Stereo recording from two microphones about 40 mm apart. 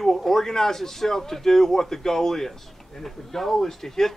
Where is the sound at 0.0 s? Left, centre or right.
Centre.